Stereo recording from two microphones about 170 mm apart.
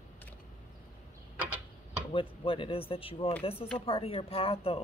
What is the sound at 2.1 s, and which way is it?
Speech, 30° left (ahead or behind).